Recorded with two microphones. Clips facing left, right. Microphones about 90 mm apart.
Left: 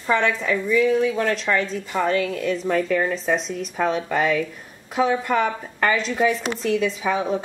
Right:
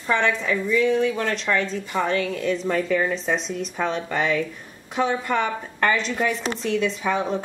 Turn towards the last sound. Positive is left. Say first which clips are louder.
# left 1 dB
turn(degrees=0)  # may be behind; listen again after turning